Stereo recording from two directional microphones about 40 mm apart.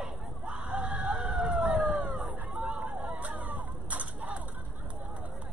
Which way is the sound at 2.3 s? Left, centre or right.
Right.